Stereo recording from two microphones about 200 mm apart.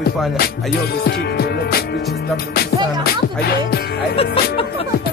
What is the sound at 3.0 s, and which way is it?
Speech, 50° left (ahead or behind).